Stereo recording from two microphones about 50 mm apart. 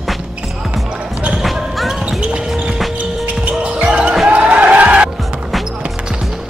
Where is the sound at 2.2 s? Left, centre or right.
Centre.